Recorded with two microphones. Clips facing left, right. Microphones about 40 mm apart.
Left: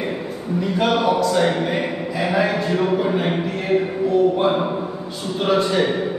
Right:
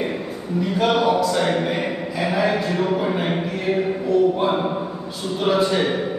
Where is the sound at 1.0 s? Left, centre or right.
Centre.